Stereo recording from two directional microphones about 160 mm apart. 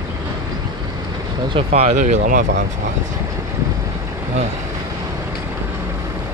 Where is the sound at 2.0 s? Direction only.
55° right (ahead or behind); by 2.7 s 75° right (ahead or behind).